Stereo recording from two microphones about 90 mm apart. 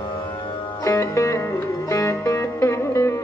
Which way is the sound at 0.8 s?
35° left (ahead or behind).